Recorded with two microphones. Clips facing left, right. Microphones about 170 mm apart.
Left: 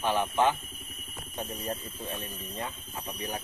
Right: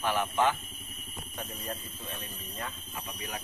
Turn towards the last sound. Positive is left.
turn(degrees=30)  # may be behind; listen again after turning